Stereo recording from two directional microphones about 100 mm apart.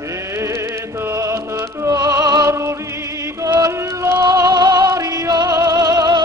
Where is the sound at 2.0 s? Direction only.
45° right (ahead or behind).